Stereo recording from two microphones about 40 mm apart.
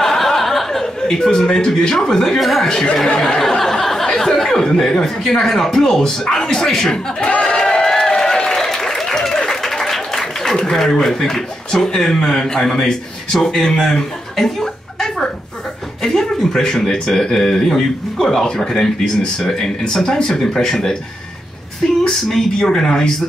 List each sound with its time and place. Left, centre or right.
0.0 s a sound: centre
1.0 s speech: centre
2.4 s speech: centre
2.7 s speech: centre
7.4 s a sound: centre
16.0 s speech: centre